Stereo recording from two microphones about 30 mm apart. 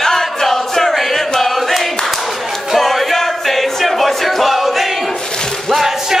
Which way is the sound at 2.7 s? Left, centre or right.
Centre.